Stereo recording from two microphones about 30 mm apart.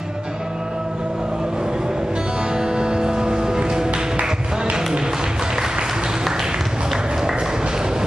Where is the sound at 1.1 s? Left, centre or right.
Right.